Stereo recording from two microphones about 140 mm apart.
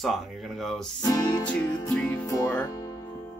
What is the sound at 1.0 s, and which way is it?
Speech, 30° left (ahead or behind).